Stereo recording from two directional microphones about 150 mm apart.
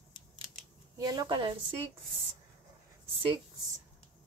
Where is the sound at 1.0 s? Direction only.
25° right (ahead or behind).